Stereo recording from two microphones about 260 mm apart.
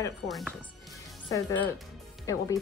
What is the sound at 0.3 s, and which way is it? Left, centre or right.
Speech, centre.